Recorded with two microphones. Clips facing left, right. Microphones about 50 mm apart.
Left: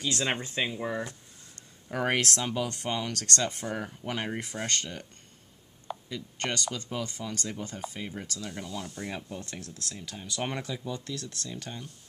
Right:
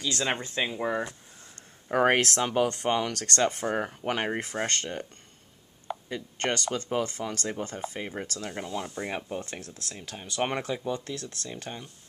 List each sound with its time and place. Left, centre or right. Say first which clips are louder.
0.6 s speech: right 1 dB; centre
0.8 s a sound: right 4 dB; right
2.3 s speech: right 6 dB; right
6.0 s speech: right 4 dB; right
10.0 s speech: right 5 dB; right